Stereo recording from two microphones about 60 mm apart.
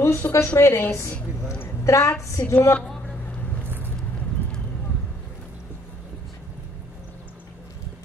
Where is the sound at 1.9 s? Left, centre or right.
Left.